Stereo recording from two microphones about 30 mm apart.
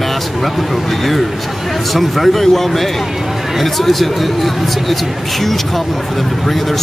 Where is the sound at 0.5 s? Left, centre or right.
Centre.